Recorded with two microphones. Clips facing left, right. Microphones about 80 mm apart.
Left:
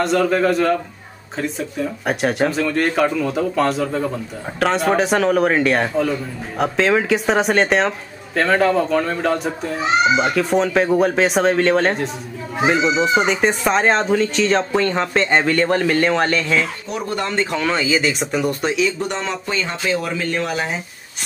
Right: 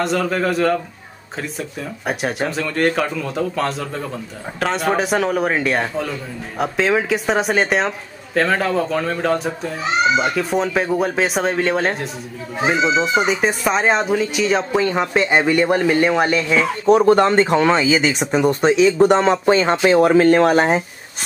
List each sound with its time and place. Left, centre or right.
0.0 s speech: centre
16.9 s speech: right
18.9 s speech: right